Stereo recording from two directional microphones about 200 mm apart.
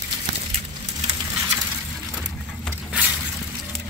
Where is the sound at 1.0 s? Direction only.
15° right (ahead or behind).